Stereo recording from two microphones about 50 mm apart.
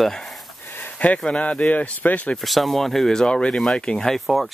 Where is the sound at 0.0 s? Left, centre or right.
Centre.